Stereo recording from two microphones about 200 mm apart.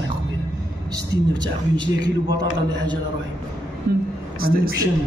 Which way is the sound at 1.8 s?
20° right (ahead or behind).